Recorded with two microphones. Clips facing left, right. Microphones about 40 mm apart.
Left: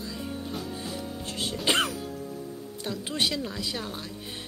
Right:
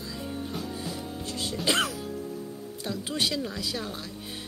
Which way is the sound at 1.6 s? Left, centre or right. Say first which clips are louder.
Left 1 dB; centre.